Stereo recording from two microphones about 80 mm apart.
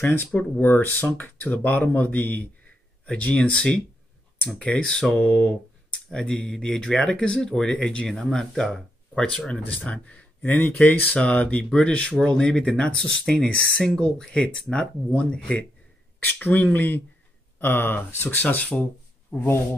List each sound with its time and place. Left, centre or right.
0.0 s speech: left
19.3 s speech: centre